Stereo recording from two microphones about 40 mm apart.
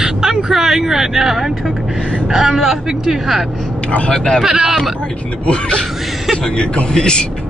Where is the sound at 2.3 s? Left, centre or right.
Centre.